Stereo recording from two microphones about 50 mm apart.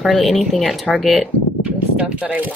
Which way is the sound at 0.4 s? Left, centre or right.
Centre.